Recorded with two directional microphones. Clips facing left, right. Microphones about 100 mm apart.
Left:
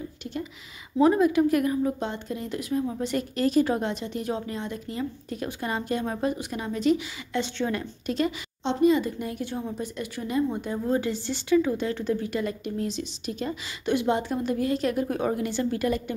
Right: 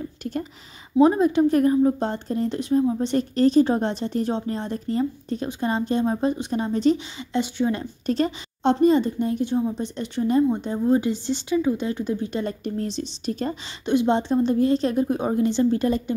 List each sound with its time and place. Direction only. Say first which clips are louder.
0.2 s speech: right 5 dB; 45° right (ahead or behind)
0.9 s a woman's voice: right 3 dB; 25° right (ahead or behind)
7.3 s a woman's voice: right 4 dB; 15° right (ahead or behind)
8.1 s a woman's voice: right 4 dB; 40° right (ahead or behind); by 9.8 s 20° right (ahead or behind)
9.8 s a woman's voice: right 6 dB; 30° right (ahead or behind)
13.8 s a woman's voice: right 4 dB; 25° right (ahead or behind)